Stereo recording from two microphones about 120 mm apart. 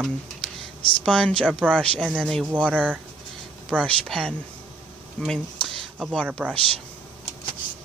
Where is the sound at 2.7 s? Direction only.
10° right (ahead or behind).